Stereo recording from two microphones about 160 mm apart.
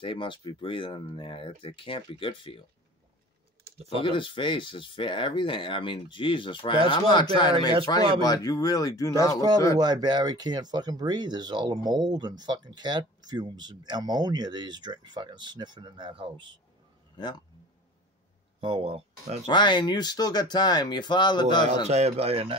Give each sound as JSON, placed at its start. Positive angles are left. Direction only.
{"t": 0.0, "sound": "speech", "side_deg": 30}
{"t": 3.7, "sound": "speech", "side_deg": -40}
{"t": 4.0, "sound": "speech", "side_deg": 30}
{"t": 9.8, "sound": "speech", "side_deg": -25}
{"t": 18.6, "sound": "speech", "side_deg": -30}
{"t": 19.4, "sound": "speech", "side_deg": 30}
{"t": 21.8, "sound": "speech", "side_deg": -45}